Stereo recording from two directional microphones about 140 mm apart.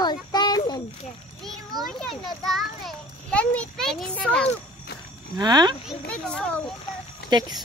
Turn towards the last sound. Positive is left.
turn(degrees=-30)  # may be behind; listen again after turning